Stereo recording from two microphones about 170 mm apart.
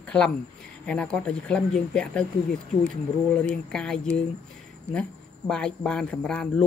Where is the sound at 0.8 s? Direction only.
5° left (ahead or behind).